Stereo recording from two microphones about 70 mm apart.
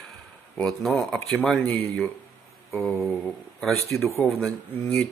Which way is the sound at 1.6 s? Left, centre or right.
Left.